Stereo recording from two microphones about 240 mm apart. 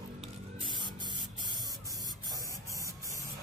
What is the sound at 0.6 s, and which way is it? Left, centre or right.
Spray, centre.